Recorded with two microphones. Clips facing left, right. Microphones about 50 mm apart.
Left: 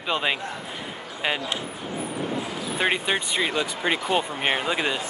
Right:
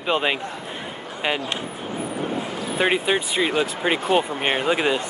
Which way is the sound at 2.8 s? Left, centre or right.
Centre.